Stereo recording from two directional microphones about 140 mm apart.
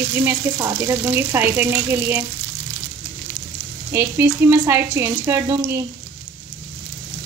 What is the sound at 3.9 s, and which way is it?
Speech, 15° right (ahead or behind).